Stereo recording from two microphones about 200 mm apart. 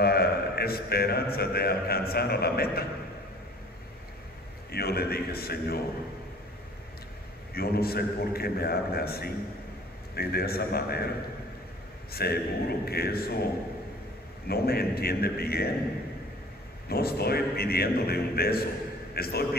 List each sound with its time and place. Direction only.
0.0 s a man's voice: 50° left (ahead or behind)
4.6 s a man's voice: 50° left (ahead or behind)
7.5 s a man's voice: 50° left (ahead or behind)
12.1 s a man's voice: 50° left (ahead or behind)
14.5 s a man's voice: 50° left (ahead or behind)
16.9 s a man's voice: 50° left (ahead or behind)